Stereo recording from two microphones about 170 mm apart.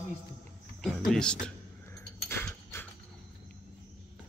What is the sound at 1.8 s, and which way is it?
Dog, 15° left (ahead or behind).